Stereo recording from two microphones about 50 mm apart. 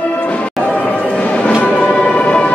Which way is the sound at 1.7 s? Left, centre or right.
Left.